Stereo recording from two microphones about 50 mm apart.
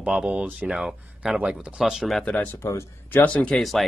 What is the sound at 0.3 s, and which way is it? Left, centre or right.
Speech, right.